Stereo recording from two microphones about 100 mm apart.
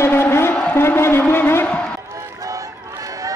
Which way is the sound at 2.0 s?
30° right (ahead or behind).